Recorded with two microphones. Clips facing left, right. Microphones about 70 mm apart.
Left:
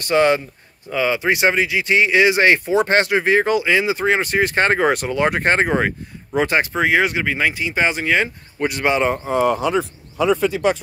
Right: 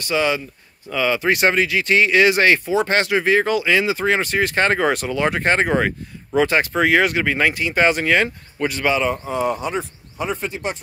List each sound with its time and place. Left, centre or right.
0.0 s speech: left
0.8 s speech: left
6.7 s speech: centre
8.5 s speech: centre
8.9 s speech: left
9.4 s speech: left